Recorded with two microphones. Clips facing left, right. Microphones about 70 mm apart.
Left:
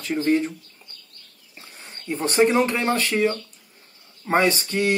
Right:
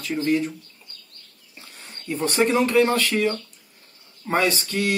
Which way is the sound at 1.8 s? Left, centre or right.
Left.